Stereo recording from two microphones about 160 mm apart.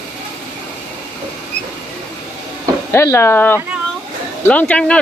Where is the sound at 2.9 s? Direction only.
15° left (ahead or behind).